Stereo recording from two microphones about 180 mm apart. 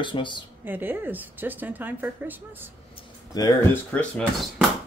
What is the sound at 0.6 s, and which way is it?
A woman's voice, 10° right (ahead or behind).